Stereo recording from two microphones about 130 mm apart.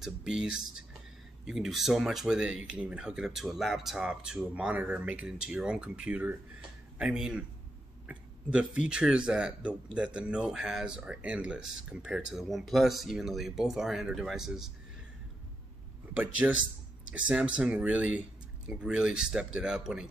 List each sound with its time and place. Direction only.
0.0 s speech: 5° right (ahead or behind)
16.2 s speech: 10° right (ahead or behind)